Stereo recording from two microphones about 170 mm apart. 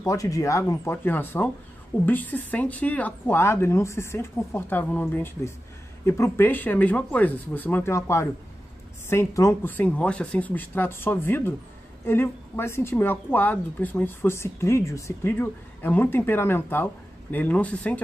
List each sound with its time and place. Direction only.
0.0 s a woman's voice: 20° left (ahead or behind)